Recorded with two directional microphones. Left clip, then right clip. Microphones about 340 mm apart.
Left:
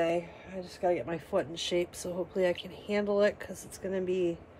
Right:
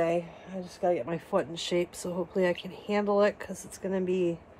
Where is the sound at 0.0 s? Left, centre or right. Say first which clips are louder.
Right 2 dB; centre.